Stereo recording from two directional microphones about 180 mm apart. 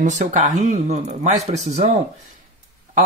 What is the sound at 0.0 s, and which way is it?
Speech, 40° right (ahead or behind).